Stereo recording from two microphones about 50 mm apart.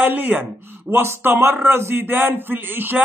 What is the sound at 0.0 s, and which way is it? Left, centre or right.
A man's voice, right.